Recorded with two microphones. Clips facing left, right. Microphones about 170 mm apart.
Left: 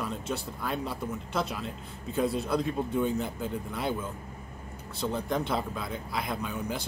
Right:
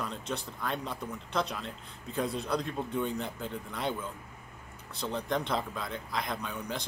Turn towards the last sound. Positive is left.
turn(degrees=5)  # may be behind; listen again after turning